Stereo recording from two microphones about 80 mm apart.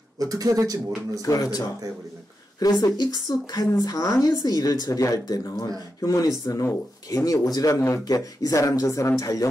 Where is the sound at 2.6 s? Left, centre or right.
Left.